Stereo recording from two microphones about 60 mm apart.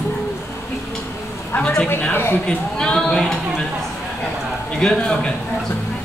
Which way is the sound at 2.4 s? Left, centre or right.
Centre.